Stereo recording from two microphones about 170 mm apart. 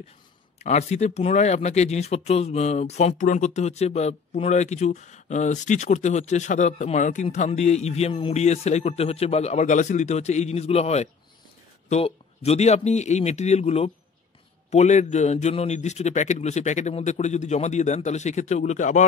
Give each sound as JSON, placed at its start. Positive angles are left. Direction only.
{"t": 0.6, "sound": "a man's voice", "side_deg": 40}